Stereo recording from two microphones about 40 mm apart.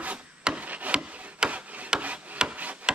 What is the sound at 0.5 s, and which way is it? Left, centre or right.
Rub, right.